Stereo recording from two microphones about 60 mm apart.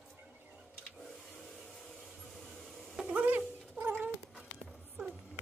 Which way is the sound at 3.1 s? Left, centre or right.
Right.